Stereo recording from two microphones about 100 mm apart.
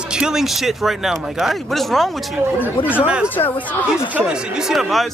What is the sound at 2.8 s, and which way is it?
Speech, 20° left (ahead or behind).